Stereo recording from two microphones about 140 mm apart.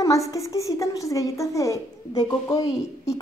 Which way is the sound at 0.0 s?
25° left (ahead or behind).